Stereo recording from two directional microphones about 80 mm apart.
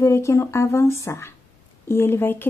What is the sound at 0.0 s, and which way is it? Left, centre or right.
Speech, left.